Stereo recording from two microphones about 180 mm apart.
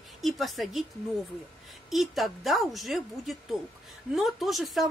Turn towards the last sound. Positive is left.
turn(degrees=0)  # may be behind; listen again after turning